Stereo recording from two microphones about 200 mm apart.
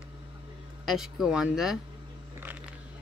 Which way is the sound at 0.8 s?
Centre (ahead or behind).